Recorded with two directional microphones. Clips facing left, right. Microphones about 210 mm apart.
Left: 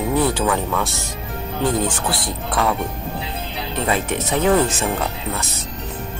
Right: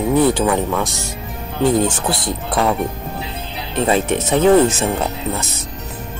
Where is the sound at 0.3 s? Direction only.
20° right (ahead or behind).